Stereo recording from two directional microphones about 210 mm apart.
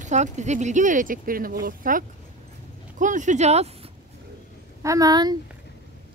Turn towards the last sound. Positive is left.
turn(degrees=-20)  # may be behind; listen again after turning